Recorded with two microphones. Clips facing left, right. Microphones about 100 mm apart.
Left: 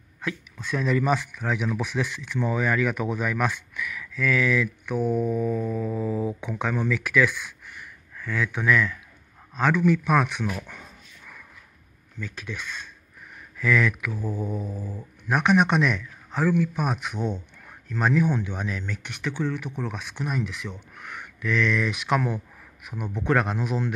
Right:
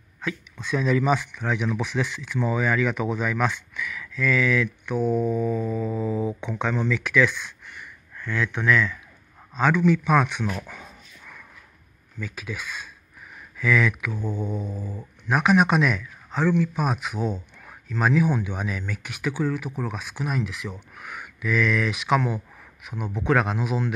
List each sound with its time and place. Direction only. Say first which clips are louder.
0.6 s speech: right 2 dB; centre (ahead or behind)
10.7 s dog: right 2 dB; centre (ahead or behind)
12.2 s speech: right 1 dB; 10° right (ahead or behind)